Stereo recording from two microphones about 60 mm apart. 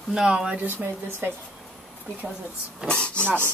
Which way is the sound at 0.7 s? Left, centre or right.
Right.